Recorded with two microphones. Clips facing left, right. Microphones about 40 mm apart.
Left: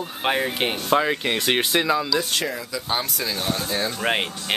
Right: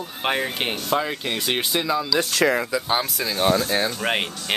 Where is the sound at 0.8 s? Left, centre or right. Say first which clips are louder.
Left 5 dB; centre.